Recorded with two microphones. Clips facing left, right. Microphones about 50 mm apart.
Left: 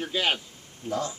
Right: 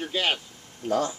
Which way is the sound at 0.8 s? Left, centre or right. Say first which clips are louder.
Right 5 dB; right.